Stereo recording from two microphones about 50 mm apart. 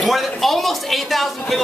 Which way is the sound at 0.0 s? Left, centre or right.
Centre.